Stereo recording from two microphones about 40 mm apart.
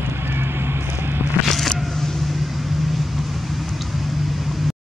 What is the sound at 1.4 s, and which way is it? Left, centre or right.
Vehicle, centre.